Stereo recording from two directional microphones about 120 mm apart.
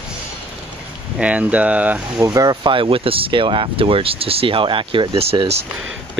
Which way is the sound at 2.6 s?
45° right (ahead or behind).